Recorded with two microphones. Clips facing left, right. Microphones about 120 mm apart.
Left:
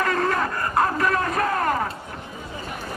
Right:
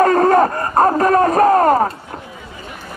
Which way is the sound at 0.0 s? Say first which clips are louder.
Right 11 dB; 40° right (ahead or behind).